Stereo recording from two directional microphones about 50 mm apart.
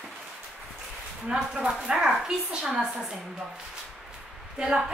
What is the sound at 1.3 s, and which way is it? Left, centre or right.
A woman's voice, centre.